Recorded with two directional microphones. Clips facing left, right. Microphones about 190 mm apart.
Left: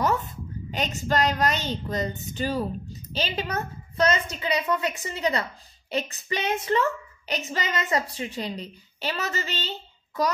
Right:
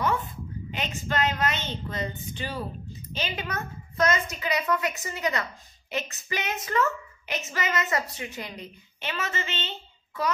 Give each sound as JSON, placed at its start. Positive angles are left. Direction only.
{"t": 0.0, "sound": "a woman's voice", "side_deg": 40}